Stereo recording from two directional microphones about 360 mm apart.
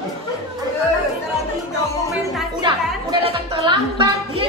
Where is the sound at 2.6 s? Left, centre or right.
Centre.